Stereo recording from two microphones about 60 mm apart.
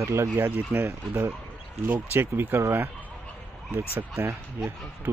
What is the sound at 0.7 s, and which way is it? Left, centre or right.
Speech, centre.